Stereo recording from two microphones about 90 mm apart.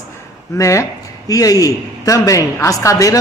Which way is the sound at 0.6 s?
35° left (ahead or behind).